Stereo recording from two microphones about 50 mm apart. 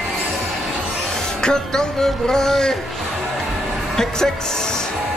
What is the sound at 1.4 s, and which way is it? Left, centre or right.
Speech, centre.